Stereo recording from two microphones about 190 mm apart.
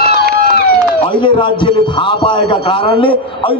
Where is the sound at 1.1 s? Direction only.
25° left (ahead or behind).